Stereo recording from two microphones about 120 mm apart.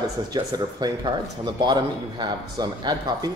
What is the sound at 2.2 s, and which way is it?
Speech, 35° right (ahead or behind).